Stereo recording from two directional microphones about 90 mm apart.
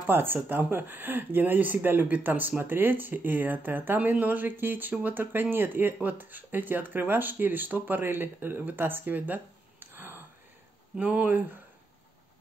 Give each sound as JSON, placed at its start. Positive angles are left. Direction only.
{"t": 0.0, "sound": "speech", "side_deg": -25}